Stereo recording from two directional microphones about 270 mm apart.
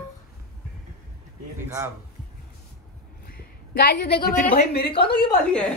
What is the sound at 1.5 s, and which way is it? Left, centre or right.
Speech, centre.